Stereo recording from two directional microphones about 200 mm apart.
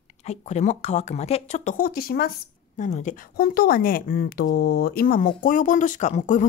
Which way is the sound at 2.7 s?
35° left (ahead or behind).